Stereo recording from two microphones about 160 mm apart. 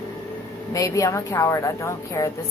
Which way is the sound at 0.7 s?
20° left (ahead or behind).